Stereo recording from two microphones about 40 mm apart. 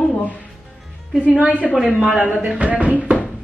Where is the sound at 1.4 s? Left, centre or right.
Right.